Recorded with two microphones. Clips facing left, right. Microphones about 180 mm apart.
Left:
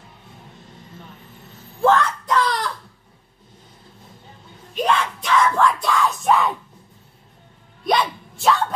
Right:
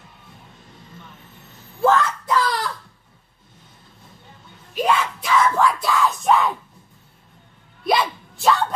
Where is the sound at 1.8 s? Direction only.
5° right (ahead or behind).